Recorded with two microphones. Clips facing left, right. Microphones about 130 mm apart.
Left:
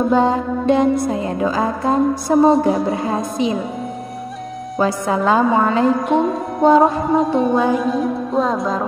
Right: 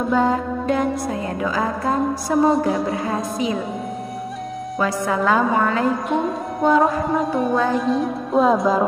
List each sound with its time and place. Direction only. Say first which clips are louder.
0.1 s a woman's voice: left 3 dB; 25° left (ahead or behind)
4.7 s a woman's voice: left 3 dB; 25° left (ahead or behind)
6.0 s music: left 5 dB; centre (ahead or behind)
6.6 s a woman's voice: left 4 dB; 25° left (ahead or behind)
7.2 s music: left 4 dB; centre (ahead or behind)